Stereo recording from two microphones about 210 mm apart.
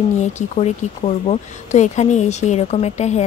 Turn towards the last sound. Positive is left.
turn(degrees=30)  # may be behind; listen again after turning